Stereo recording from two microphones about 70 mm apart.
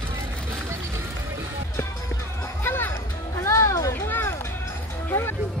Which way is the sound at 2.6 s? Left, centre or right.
Left.